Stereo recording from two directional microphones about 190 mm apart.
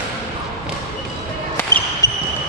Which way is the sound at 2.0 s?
15° left (ahead or behind).